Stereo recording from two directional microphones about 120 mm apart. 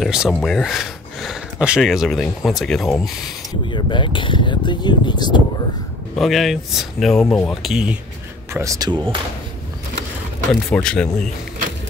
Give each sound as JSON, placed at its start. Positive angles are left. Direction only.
{"t": 0.0, "sound": "speech", "side_deg": -5}
{"t": 3.6, "sound": "speech", "side_deg": 40}
{"t": 6.1, "sound": "speech", "side_deg": 0}
{"t": 8.5, "sound": "speech", "side_deg": -30}
{"t": 10.7, "sound": "speech", "side_deg": 5}